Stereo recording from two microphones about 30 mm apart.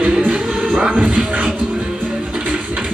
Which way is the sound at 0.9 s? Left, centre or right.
Right.